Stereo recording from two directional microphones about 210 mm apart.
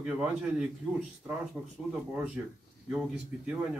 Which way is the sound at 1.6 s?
10° right (ahead or behind).